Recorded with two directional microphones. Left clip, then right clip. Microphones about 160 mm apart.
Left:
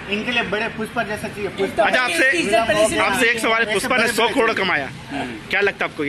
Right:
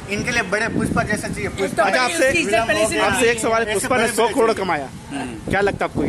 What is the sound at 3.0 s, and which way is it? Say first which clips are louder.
A man's voice: even; 15° right (ahead or behind).